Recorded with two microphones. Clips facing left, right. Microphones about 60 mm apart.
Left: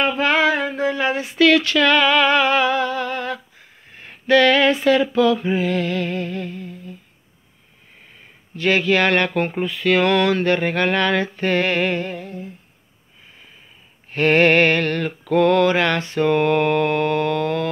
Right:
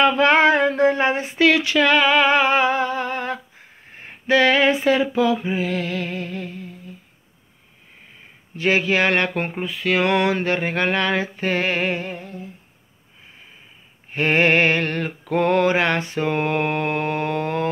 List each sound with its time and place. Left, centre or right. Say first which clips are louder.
0.0 s a sound: right 3 dB; right
1.1 s music: left 2 dB; right
3.9 s a sound: left 3 dB; right
5.4 s music: left 3 dB; centre
8.5 s mantra: left 1 dB; centre
10.0 s mantra: left 2 dB; centre
14.1 s mantra: left 3 dB; centre